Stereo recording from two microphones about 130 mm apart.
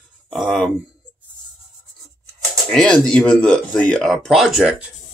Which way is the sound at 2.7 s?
5° left (ahead or behind).